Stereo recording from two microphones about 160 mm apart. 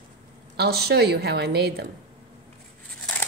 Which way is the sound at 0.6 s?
90° right.